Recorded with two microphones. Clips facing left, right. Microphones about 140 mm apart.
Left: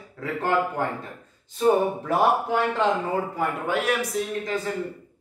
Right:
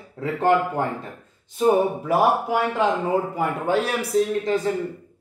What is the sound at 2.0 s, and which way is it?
Speech, 10° right (ahead or behind).